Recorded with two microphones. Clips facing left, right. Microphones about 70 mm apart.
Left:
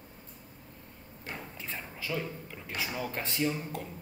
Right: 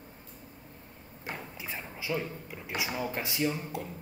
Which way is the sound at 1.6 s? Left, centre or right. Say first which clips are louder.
Right 1 dB; centre.